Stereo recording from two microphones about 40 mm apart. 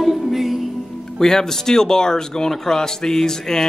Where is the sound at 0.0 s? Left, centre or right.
Centre.